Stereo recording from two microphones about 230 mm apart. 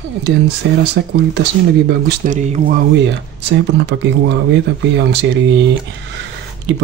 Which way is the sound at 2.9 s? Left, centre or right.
Right.